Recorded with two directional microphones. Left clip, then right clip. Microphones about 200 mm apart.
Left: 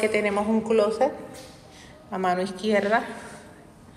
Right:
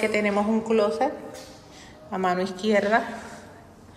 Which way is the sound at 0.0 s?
15° right (ahead or behind).